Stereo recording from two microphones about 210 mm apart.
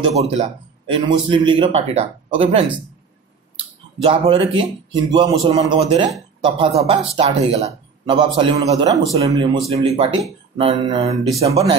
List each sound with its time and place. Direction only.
0.0 s speech: 30° right (ahead or behind)
3.5 s speech: 25° right (ahead or behind)
9.7 s speech: 30° right (ahead or behind)